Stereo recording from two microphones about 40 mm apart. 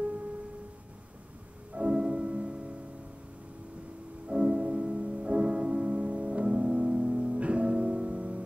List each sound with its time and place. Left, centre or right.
0.0 s music: right
1.7 s music: right
4.3 s music: right